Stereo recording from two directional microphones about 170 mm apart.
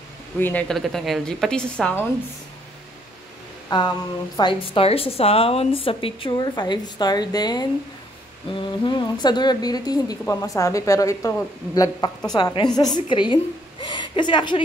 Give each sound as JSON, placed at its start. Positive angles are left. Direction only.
{"t": 0.4, "sound": "a woman's voice", "side_deg": 10}
{"t": 3.7, "sound": "a woman's voice", "side_deg": 25}